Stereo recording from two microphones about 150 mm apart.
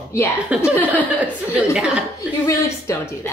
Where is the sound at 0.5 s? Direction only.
10° right (ahead or behind).